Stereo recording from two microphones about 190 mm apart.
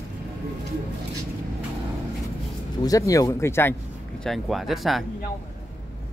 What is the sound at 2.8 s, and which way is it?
Speech, 20° left (ahead or behind).